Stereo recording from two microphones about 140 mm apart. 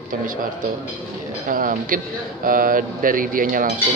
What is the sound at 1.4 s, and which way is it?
A man's voice, 80° right.